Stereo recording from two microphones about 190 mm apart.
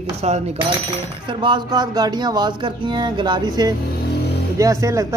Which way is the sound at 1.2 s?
25° right (ahead or behind).